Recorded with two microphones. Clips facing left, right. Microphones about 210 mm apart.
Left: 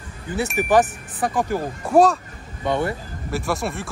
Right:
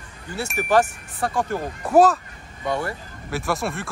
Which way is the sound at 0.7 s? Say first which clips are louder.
Even; 15° left (ahead or behind).